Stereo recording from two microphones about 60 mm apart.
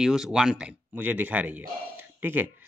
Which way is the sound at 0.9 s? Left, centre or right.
Right.